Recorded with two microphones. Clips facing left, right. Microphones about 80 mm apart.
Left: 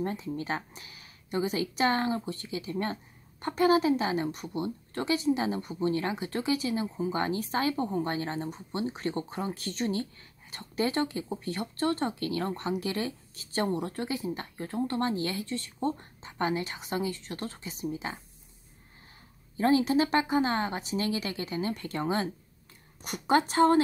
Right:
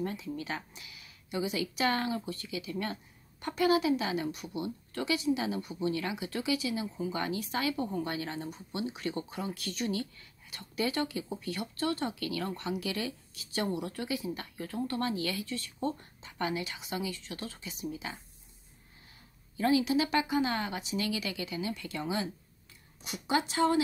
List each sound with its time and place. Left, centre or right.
0.0 s speech: left
19.5 s speech: left